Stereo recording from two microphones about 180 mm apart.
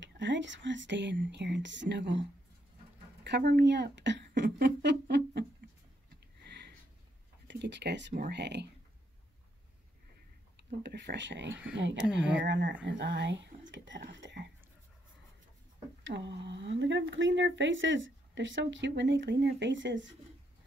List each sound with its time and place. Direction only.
0.0 s speech: 90° right
3.3 s speech: 70° right (ahead or behind)
6.4 s sniff: 70° right (ahead or behind)
7.4 s speech: 75° right (ahead or behind)
8.1 s speech: 60° right (ahead or behind)
10.8 s speech: 70° right (ahead or behind)
16.0 s speech: 80° right